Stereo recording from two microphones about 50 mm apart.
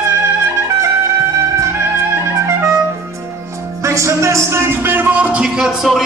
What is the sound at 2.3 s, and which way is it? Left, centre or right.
Music, right.